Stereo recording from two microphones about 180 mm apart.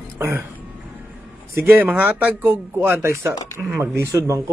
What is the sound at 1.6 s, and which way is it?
A man's voice, 10° right (ahead or behind).